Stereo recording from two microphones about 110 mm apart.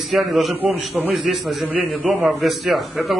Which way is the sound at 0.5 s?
15° right (ahead or behind).